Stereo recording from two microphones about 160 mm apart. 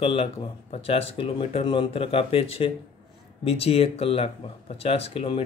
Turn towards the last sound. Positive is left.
turn(degrees=35)  # may be behind; listen again after turning